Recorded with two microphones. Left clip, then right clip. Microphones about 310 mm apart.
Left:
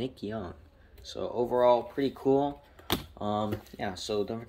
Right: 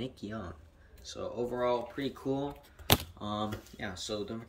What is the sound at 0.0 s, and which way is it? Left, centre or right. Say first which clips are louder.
Speech: left 5 dB; centre.